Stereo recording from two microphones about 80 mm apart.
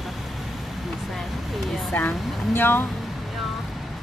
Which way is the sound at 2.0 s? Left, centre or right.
Left.